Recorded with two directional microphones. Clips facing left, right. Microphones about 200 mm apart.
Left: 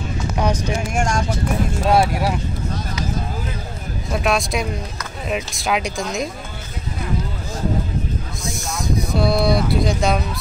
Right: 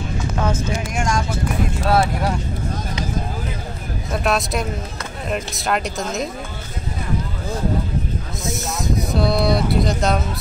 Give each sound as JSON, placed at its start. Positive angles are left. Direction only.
{"t": 0.4, "sound": "speech", "side_deg": 15}
{"t": 0.9, "sound": "speech", "side_deg": 45}
{"t": 1.9, "sound": "speech", "side_deg": 15}
{"t": 4.1, "sound": "speech", "side_deg": 0}
{"t": 8.6, "sound": "speech", "side_deg": 0}